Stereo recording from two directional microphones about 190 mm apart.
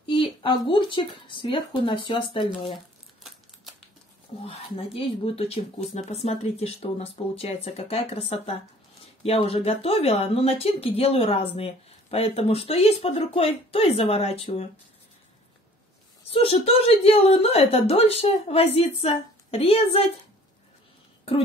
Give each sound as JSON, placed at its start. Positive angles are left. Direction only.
{"t": 0.0, "sound": "speech", "side_deg": 25}
{"t": 4.5, "sound": "speech", "side_deg": 30}
{"t": 16.3, "sound": "speech", "side_deg": 30}